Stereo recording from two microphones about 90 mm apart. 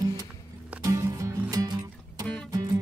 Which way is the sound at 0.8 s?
35° right (ahead or behind).